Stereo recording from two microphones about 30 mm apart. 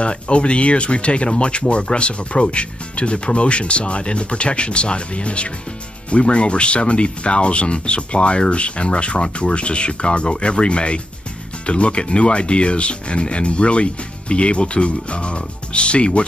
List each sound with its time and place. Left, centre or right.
0.0 s speech: left